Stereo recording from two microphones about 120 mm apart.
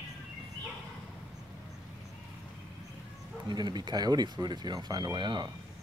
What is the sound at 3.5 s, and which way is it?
Speech, 35° right (ahead or behind).